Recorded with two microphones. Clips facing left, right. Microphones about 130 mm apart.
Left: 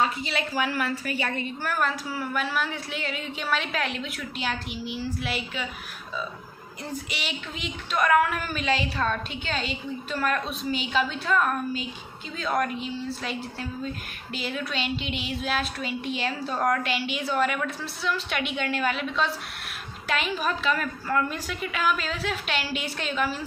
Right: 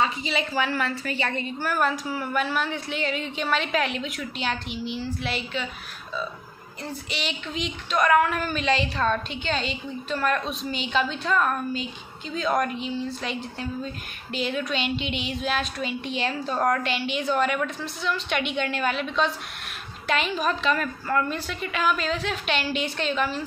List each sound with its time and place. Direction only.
0.0 s a woman's voice: centre (ahead or behind)
6.9 s a woman's voice: 10° left (ahead or behind)
16.5 s a woman's voice: 5° right (ahead or behind)
16.8 s a woman's voice: 5° left (ahead or behind)